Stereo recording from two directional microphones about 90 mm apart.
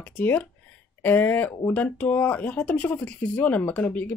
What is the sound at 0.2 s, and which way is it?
Speech, 20° left (ahead or behind).